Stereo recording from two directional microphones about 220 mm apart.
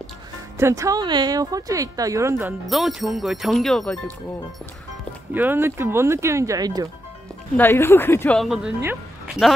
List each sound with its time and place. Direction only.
0.6 s speech: 15° right (ahead or behind)
2.6 s speech: centre (ahead or behind)
5.3 s speech: 10° right (ahead or behind)
7.5 s speech: 10° left (ahead or behind)